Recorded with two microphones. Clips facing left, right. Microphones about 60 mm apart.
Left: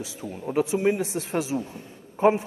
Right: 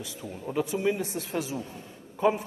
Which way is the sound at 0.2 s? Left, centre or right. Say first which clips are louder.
Left 5 dB; left.